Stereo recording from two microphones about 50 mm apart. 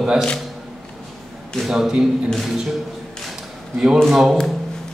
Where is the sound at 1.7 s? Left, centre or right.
Centre.